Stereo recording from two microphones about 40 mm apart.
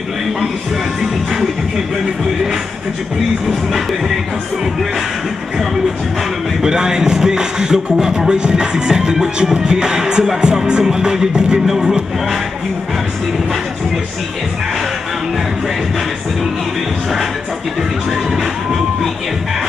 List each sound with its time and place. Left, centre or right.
6.6 s music: centre
18.1 s music: centre